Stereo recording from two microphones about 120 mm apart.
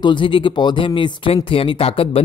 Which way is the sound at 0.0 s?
40° left (ahead or behind).